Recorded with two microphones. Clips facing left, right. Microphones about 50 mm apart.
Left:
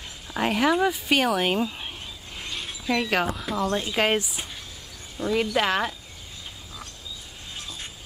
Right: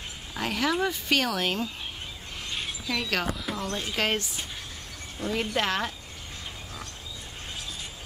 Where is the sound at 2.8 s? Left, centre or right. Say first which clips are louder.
Left 6 dB; centre.